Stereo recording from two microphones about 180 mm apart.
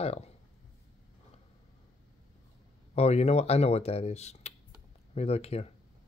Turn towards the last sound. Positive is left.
turn(degrees=35)  # may be behind; listen again after turning